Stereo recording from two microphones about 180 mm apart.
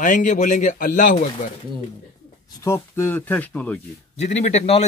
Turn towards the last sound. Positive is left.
turn(degrees=40)  # may be behind; listen again after turning